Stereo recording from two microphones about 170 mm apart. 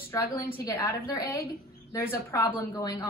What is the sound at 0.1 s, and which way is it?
A woman's voice, 15° left (ahead or behind).